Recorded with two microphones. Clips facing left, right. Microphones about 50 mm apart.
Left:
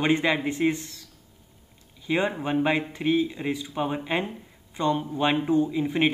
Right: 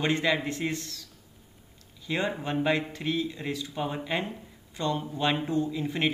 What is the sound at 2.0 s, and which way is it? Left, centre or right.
Speech, left.